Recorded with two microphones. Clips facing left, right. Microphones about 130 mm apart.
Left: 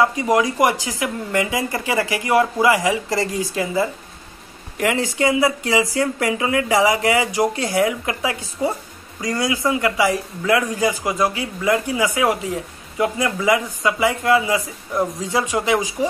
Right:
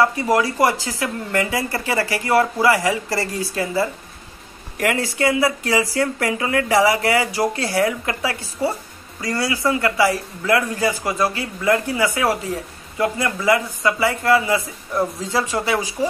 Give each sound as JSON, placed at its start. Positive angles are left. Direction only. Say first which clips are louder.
{"t": 0.0, "sound": "speech", "louder": "even", "side_deg": 15}